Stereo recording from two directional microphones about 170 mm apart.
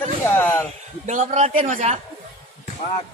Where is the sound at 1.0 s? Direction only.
45° right (ahead or behind).